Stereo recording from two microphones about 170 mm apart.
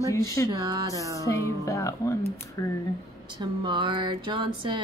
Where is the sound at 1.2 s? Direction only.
20° left (ahead or behind).